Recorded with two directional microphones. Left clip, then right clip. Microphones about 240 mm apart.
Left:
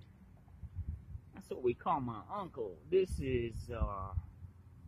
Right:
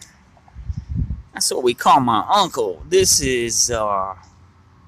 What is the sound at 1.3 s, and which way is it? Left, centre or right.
Speech, right.